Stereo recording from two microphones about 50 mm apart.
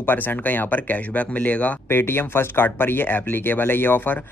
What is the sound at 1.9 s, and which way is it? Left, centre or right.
Speech, left.